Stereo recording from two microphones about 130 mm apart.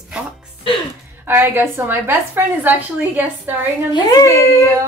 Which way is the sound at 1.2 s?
15° right (ahead or behind).